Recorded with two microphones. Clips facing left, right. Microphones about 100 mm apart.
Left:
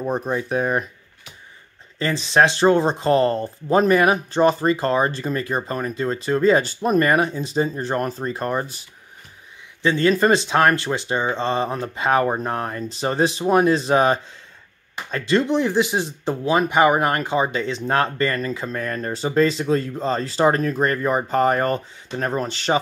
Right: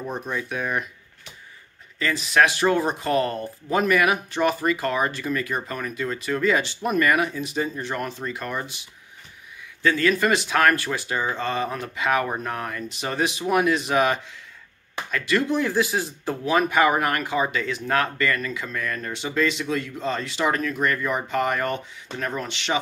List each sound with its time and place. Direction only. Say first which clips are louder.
0.1 s speech: left 8 dB; 35° left (ahead or behind)
2.0 s speech: left 2 dB; 30° left (ahead or behind)
9.8 s speech: left 3 dB; 25° left (ahead or behind)